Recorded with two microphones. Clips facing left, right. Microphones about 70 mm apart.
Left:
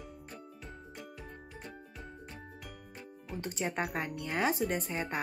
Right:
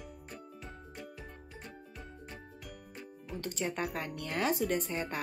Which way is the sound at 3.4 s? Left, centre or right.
Left.